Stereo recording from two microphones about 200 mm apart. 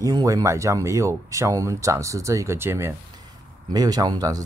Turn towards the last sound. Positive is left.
turn(degrees=-20)  # may be behind; listen again after turning